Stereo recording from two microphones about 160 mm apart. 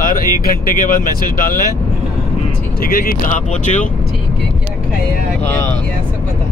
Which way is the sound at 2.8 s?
65° left (ahead or behind).